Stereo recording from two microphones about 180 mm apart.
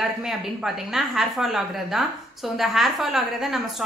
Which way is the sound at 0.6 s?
Centre (ahead or behind).